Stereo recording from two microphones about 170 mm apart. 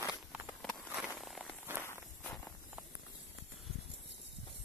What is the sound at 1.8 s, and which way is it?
Walk, 15° left (ahead or behind).